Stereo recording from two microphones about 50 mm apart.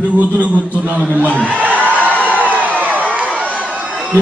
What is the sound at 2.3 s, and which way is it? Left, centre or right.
Crowd, right.